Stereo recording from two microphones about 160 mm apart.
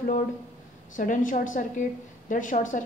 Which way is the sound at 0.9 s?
55° left (ahead or behind).